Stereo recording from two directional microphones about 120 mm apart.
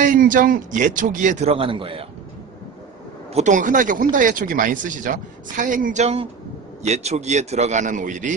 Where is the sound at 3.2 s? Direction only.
75° right (ahead or behind).